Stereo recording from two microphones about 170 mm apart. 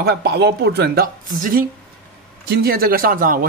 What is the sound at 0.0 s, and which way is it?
A woman's voice, 65° right (ahead or behind).